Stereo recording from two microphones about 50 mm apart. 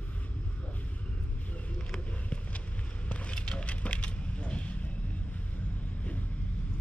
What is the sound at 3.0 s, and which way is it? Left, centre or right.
Coin, left.